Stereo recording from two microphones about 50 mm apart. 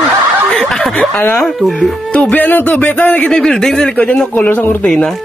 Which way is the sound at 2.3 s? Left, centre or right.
Left.